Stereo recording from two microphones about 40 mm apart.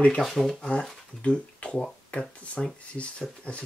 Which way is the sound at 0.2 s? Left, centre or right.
Centre.